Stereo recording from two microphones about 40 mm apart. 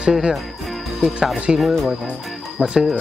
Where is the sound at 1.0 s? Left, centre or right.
Centre.